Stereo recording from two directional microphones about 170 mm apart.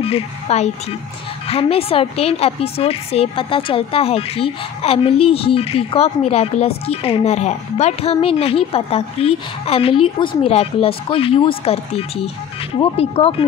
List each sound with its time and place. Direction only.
0.0 s a woman's voice: 35° left (ahead or behind)